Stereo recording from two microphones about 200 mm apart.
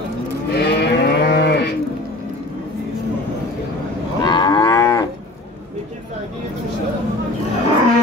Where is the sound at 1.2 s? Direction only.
55° left (ahead or behind).